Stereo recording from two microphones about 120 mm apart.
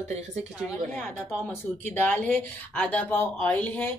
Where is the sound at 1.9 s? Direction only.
15° left (ahead or behind).